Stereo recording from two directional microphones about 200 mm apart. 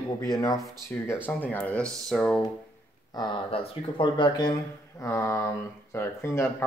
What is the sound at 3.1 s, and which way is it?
Speech, 20° left (ahead or behind).